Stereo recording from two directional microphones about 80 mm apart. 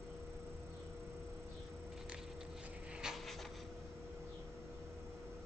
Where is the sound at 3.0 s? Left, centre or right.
Centre.